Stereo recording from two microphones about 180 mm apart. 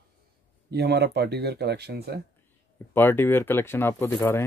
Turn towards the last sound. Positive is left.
turn(degrees=15)  # may be behind; listen again after turning